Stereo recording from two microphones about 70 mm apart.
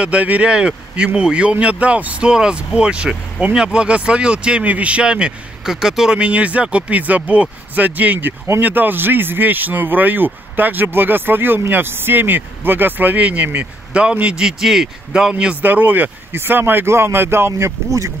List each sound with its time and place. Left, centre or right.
0.0 s speech: centre
15.6 s speech: right